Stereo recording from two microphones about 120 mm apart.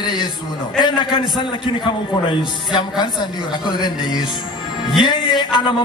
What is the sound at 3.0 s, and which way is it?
A man's voice, 40° left (ahead or behind).